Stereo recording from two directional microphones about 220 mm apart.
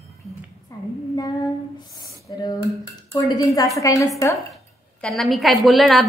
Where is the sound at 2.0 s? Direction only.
20° left (ahead or behind).